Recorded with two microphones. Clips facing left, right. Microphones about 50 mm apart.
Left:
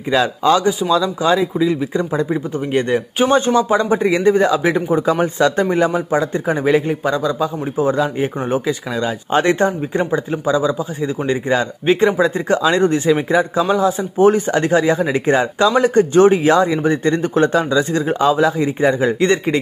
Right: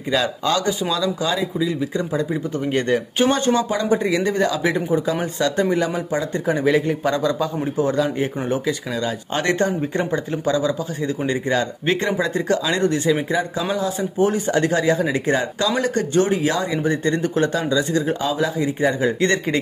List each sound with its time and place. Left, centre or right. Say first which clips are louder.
0.1 s speech: left 6 dB; centre
2.7 s speech: left 3 dB; centre
3.3 s speech: left 6 dB; left
4.6 s speech: left 4 dB; left
7.1 s a man's voice: left 2 dB; centre
7.7 s speech: left 3 dB; left
10.1 s speech: left 4 dB; centre
12.2 s speech: left 5 dB; left